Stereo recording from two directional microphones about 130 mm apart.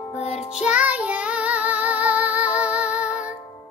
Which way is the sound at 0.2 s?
55° left (ahead or behind).